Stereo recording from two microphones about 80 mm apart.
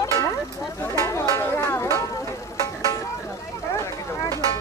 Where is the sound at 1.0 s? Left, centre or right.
Left.